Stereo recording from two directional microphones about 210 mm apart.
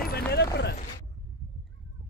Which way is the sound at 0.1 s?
50° left (ahead or behind).